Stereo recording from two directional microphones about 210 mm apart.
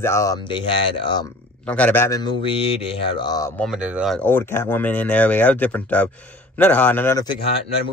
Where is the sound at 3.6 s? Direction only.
5° right (ahead or behind).